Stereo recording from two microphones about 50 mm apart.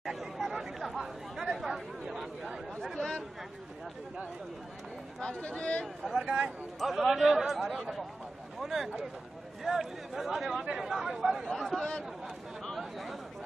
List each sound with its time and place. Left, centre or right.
0.0 s chatter: centre
3.0 s chatter: centre
5.4 s speech: left
6.0 s speech: centre
6.8 s speech: centre
11.4 s speech: centre
12.7 s chatter: centre